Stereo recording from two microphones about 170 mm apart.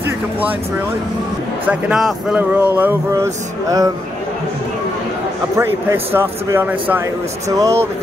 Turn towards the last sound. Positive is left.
turn(degrees=-20)  # may be behind; listen again after turning